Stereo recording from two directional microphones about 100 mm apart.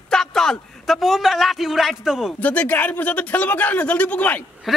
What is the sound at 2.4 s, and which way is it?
Speech, 15° left (ahead or behind).